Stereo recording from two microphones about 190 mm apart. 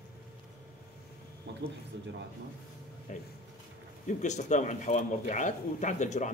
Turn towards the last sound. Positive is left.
turn(degrees=40)  # may be behind; listen again after turning